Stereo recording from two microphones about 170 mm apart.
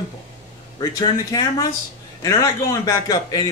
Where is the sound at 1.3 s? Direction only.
20° left (ahead or behind).